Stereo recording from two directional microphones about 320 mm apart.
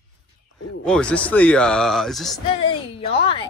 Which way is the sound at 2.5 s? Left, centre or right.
Centre.